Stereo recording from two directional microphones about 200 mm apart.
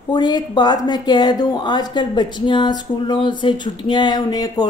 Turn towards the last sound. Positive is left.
turn(degrees=20)  # may be behind; listen again after turning